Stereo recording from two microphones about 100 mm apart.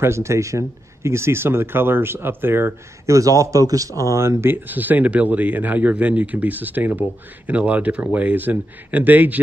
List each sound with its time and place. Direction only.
0.0 s speech: 30° right (ahead or behind)